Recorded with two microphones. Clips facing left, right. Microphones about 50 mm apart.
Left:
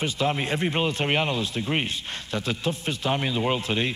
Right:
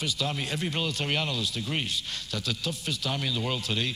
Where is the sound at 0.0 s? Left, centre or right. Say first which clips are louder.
Left 6 dB; left.